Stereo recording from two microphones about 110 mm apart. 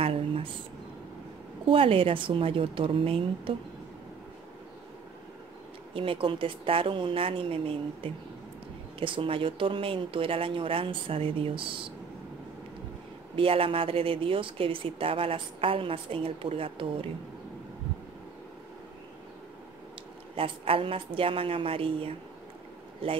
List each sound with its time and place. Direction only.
0.0 s a sound: 60° right (ahead or behind)
1.7 s speech: 55° right (ahead or behind)
5.9 s speech: 55° right (ahead or behind)
13.4 s speech: 55° right (ahead or behind)
20.3 s speech: 55° right (ahead or behind)